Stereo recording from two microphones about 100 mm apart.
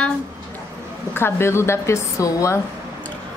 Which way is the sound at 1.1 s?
25° left (ahead or behind).